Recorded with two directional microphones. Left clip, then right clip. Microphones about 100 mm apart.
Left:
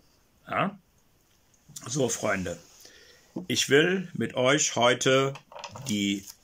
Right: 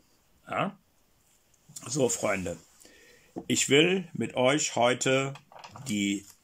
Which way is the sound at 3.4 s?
25° right (ahead or behind).